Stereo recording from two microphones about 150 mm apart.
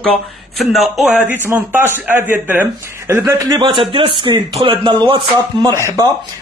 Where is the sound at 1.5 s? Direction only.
15° right (ahead or behind).